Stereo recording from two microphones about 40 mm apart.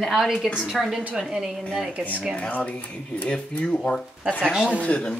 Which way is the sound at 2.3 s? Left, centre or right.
Left.